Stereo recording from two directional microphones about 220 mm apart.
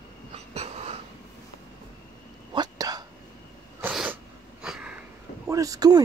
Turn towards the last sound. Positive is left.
turn(degrees=-15)  # may be behind; listen again after turning